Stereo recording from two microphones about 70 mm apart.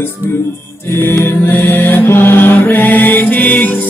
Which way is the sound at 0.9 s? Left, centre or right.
Left.